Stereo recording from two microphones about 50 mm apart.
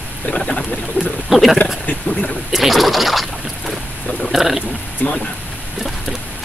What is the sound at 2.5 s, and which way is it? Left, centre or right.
Speech, centre.